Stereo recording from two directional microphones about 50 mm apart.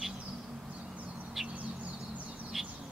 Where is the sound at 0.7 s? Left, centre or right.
Right.